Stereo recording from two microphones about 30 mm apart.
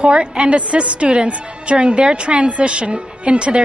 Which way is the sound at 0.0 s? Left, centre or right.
Right.